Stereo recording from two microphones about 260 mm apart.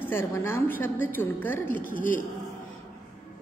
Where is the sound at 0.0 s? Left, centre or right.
Centre.